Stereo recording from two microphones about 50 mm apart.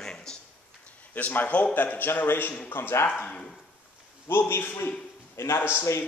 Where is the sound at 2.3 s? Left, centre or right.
Left.